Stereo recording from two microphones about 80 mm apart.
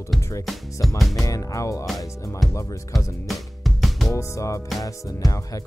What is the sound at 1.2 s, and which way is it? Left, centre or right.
Music, left.